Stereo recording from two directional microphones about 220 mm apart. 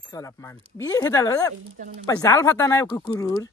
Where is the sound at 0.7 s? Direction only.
15° left (ahead or behind).